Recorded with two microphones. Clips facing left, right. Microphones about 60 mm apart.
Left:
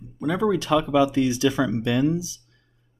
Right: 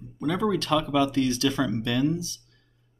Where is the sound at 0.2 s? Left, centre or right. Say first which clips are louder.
Left 3 dB; centre.